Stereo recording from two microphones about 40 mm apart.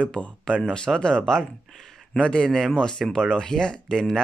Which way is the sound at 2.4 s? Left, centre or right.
Centre.